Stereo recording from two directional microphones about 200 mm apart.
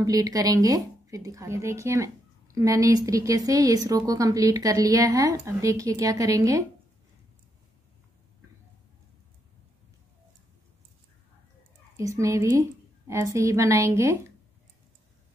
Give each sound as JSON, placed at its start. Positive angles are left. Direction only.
{"t": 0.0, "sound": "a woman's voice", "side_deg": -20}
{"t": 12.0, "sound": "a woman's voice", "side_deg": -15}